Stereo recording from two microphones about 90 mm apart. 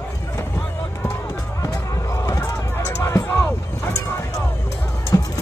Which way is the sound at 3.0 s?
30° left (ahead or behind).